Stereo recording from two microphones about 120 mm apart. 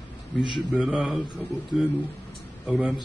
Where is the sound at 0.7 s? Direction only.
10° right (ahead or behind).